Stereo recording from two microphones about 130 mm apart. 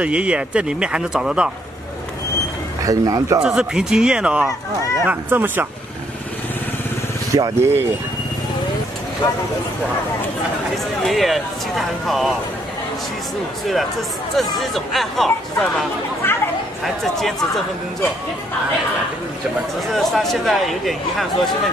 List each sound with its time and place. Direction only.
0.0 s speech: 10° right (ahead or behind)
2.8 s speech: 25° right (ahead or behind)
3.4 s speech: 5° right (ahead or behind)
7.3 s speech: 25° right (ahead or behind)
11.1 s speech: centre (ahead or behind)
14.3 s speech: centre (ahead or behind)
16.2 s chatter: 15° left (ahead or behind)
16.8 s speech: 5° left (ahead or behind)
19.9 s speech: centre (ahead or behind)